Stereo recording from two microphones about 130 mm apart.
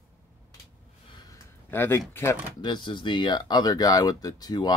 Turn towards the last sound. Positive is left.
turn(degrees=35)  # may be behind; listen again after turning